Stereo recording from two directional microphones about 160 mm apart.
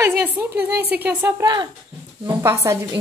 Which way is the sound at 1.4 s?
25° right (ahead or behind).